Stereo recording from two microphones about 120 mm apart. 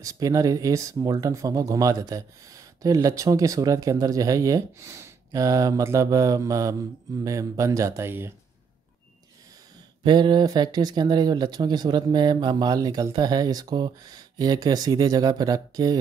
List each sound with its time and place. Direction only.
0.0 s speech: 30° right (ahead or behind)
10.0 s speech: 40° right (ahead or behind)